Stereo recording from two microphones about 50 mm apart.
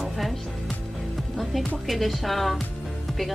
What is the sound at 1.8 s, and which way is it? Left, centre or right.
Speech, centre.